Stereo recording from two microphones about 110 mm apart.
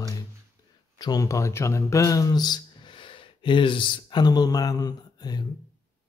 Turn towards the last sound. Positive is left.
turn(degrees=40)  # may be behind; listen again after turning